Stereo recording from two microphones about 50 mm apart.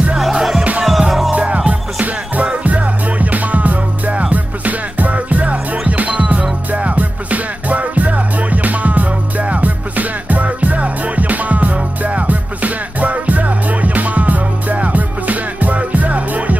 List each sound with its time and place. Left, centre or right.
0.3 s music: centre
1.3 s music: right